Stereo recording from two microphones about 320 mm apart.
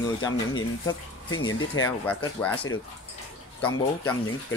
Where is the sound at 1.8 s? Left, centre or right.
Centre.